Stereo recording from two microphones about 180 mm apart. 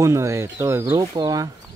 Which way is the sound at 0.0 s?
15° right (ahead or behind).